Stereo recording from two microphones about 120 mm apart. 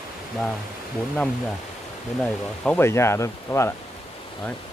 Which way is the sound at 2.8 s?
20° left (ahead or behind).